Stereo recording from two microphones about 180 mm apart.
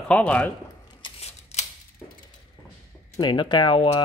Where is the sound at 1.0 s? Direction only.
35° left (ahead or behind).